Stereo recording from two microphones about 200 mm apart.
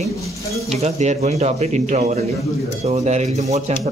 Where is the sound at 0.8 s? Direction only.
35° right (ahead or behind).